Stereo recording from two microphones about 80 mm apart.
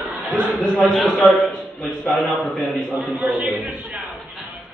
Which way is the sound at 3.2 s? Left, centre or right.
Centre.